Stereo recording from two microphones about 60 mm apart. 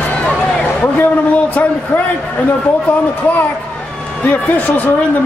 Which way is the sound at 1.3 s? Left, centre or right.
Left.